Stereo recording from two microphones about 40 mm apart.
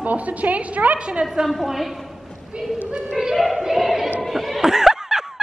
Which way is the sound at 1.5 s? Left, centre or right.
Centre.